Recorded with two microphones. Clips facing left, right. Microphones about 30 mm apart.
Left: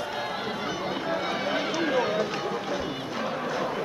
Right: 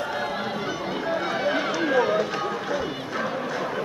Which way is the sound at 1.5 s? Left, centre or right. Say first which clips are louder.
Right 3 dB; centre.